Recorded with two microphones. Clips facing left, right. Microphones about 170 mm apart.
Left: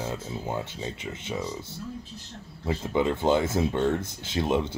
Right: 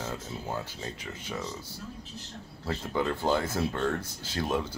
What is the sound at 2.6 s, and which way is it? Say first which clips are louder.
Speech: left 4 dB; 20° left (ahead or behind).